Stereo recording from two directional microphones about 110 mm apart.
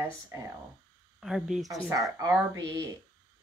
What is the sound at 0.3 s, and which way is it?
Speech, 25° right (ahead or behind).